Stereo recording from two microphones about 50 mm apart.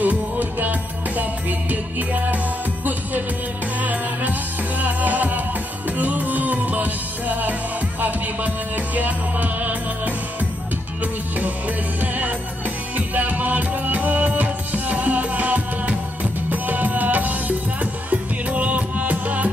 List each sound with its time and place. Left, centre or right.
0.0 s music: right
12.0 s music: right